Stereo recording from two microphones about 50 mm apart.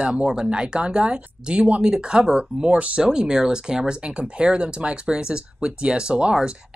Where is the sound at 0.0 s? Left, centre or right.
Centre.